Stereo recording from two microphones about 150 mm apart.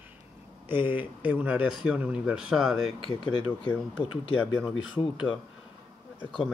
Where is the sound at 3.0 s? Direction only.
35° left (ahead or behind).